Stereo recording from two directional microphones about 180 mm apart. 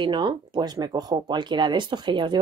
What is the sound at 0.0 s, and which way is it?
Speech, 25° right (ahead or behind).